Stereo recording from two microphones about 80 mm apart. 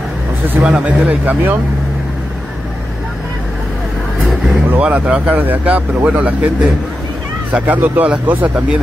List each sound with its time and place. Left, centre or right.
0.5 s speech: right
4.6 s speech: centre